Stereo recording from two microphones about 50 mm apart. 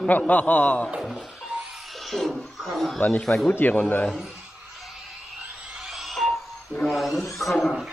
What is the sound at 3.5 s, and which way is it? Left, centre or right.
Speech, left.